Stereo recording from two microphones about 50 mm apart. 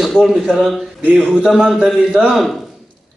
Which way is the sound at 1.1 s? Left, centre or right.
Centre.